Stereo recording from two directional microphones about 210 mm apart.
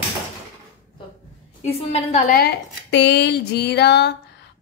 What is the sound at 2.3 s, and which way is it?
A woman's voice, 50° left (ahead or behind).